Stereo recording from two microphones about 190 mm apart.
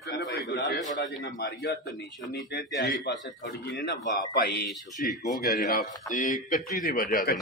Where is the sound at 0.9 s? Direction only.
70° left (ahead or behind).